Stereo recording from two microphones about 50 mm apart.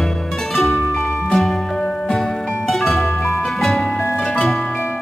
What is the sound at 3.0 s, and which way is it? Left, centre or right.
Music, left.